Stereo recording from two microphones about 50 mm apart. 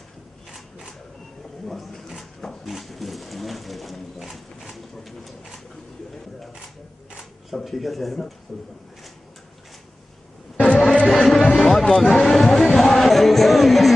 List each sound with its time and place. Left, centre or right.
0.5 s a sound: centre
7.5 s speech: centre
10.7 s music: centre